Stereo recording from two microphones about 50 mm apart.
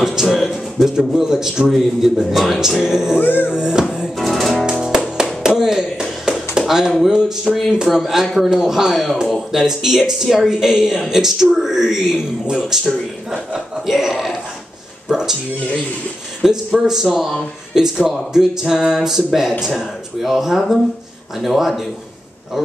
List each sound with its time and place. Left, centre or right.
0.0 s speech: centre
3.2 s music: left
3.4 s speech: centre
4.2 s music: centre
4.8 s music: centre
5.6 s a sound: centre
7.1 s speech: centre
7.8 s speech: centre
13.8 s a sound: centre
16.4 s speech: centre
17.7 s speech: centre